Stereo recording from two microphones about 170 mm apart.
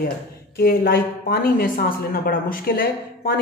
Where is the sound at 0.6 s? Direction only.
60° left (ahead or behind).